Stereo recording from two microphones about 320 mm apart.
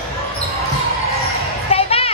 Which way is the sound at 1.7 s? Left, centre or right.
Centre.